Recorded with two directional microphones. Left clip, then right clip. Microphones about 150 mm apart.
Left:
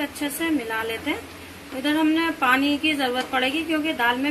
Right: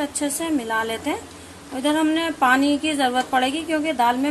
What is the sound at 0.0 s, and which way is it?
A woman's voice, 90° right.